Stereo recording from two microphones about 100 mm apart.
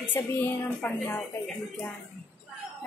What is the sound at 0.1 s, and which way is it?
A woman's voice, 20° left (ahead or behind).